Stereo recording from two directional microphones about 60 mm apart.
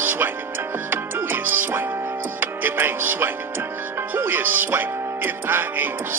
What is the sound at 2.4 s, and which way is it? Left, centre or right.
Speech, right.